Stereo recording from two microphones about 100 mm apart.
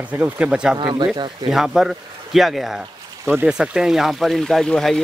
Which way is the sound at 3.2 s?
20° right (ahead or behind).